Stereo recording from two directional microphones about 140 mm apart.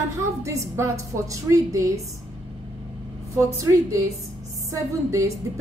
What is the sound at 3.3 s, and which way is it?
A woman's voice, 20° right (ahead or behind).